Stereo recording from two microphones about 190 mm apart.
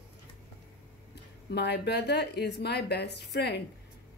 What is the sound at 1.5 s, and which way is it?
Speech, 60° left (ahead or behind).